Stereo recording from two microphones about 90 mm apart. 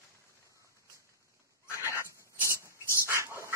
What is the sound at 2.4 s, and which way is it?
Dog, 30° right (ahead or behind).